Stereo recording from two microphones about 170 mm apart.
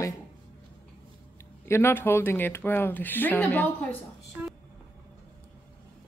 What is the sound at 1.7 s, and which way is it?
Speech, 15° left (ahead or behind).